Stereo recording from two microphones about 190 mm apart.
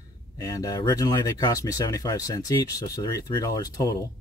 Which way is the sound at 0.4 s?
20° left (ahead or behind).